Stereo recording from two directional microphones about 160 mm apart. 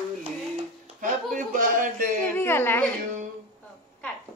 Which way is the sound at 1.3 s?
55° right (ahead or behind).